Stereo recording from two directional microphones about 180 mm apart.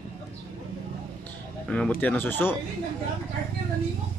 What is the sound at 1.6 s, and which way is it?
Speech, 5° left (ahead or behind).